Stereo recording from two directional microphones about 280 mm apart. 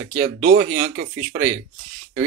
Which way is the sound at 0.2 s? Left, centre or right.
Right.